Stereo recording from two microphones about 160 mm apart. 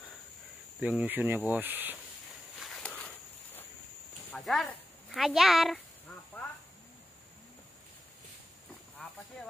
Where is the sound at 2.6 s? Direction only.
5° left (ahead or behind).